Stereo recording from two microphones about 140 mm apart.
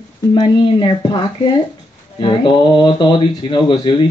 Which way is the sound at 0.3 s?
35° left (ahead or behind).